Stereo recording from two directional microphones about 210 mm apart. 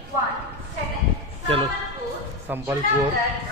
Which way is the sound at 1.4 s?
25° right (ahead or behind).